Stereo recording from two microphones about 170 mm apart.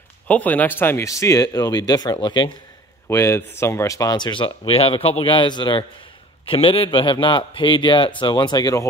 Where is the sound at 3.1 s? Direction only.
15° left (ahead or behind).